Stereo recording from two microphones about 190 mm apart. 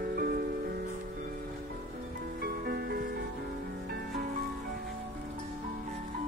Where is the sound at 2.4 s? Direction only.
55° right (ahead or behind).